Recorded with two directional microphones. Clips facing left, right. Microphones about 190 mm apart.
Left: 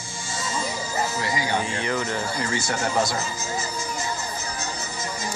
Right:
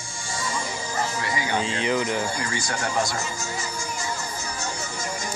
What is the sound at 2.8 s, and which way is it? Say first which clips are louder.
Speech: left 1 dB; 20° left (ahead or behind).